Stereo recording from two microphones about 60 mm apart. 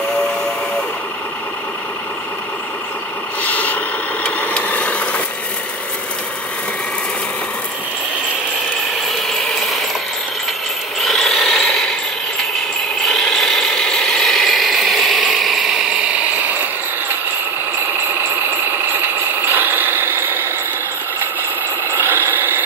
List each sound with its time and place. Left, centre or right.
3.4 s vehicle: left
8.9 s ratchet: centre
11.0 s mechanisms: centre
18.0 s vehicle: right
21.8 s vehicle: right